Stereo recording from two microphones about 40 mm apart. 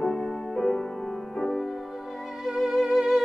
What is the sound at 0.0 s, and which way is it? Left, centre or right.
Music, centre.